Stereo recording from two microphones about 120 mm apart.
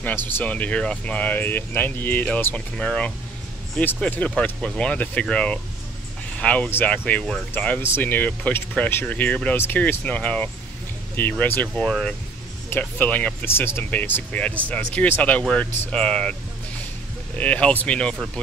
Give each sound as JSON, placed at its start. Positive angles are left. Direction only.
{"t": 0.0, "sound": "speech", "side_deg": 15}
{"t": 17.4, "sound": "speech", "side_deg": 10}